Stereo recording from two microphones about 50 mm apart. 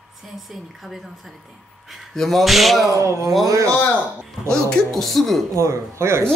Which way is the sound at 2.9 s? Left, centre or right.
Right.